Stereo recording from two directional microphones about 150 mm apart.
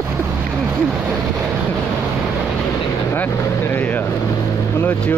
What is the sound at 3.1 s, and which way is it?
Speech, 15° left (ahead or behind).